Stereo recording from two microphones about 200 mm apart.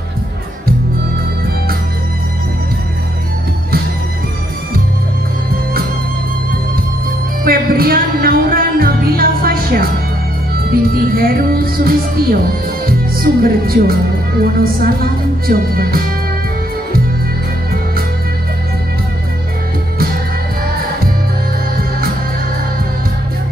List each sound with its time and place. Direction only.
7.4 s music: 45° right (ahead or behind)
10.7 s speech: 50° right (ahead or behind)